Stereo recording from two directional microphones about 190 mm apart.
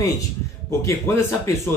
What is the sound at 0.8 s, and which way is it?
Speech, 15° left (ahead or behind).